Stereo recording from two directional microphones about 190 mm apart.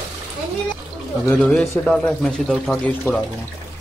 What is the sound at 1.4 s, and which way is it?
Speech, centre (ahead or behind).